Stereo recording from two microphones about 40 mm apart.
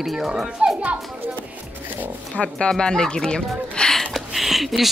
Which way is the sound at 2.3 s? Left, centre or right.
Left.